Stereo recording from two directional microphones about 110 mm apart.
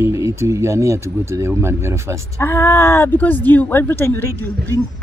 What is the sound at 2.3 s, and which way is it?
Speech, 20° left (ahead or behind).